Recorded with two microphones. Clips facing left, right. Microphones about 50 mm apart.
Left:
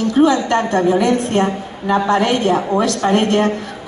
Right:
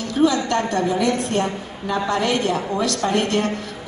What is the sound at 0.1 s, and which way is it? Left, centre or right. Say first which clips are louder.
A woman's voice: left 4 dB; left.